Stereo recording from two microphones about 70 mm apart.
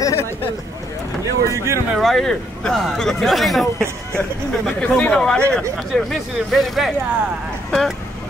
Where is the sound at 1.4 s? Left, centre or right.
Right.